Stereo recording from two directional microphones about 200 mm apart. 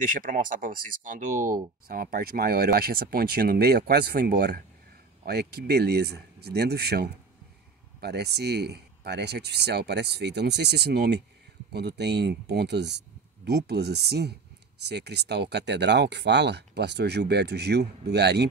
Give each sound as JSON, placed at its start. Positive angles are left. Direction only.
{"t": 0.1, "sound": "speech", "side_deg": -45}